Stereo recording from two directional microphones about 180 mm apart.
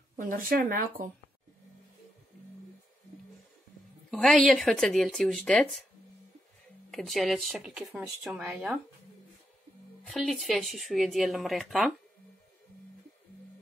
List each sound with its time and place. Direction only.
0.1 s speech: 50° right (ahead or behind)
4.1 s speech: centre (ahead or behind)
6.9 s speech: centre (ahead or behind)
10.0 s speech: centre (ahead or behind)